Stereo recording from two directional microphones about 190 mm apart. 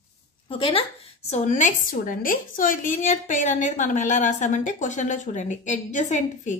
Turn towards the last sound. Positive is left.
turn(degrees=40)  # may be behind; listen again after turning